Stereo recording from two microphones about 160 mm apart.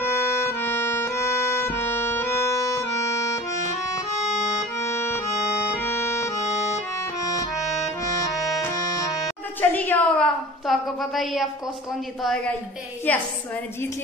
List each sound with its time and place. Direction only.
0.0 s music: 15° left (ahead or behind)
4.6 s accordion: 15° left (ahead or behind)
7.2 s music: 20° left (ahead or behind)
9.6 s a woman's voice: 10° left (ahead or behind)